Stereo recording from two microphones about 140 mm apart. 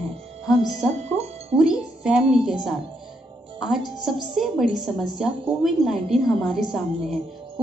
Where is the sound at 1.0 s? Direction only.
50° right (ahead or behind).